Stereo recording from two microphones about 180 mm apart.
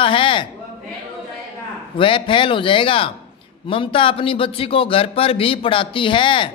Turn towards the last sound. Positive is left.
turn(degrees=30)  # may be behind; listen again after turning